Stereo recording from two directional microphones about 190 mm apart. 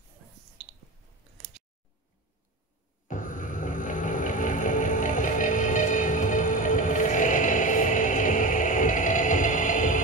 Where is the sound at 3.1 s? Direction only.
45° left (ahead or behind).